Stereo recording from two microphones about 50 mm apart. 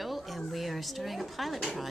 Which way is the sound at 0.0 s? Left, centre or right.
Centre.